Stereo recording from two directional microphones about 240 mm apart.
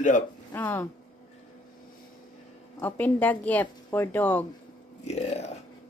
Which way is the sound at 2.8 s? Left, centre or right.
Centre.